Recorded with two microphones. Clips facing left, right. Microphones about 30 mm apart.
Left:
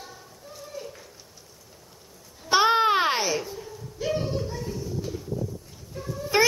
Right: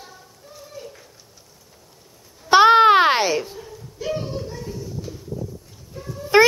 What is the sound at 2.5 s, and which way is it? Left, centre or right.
Babbling, right.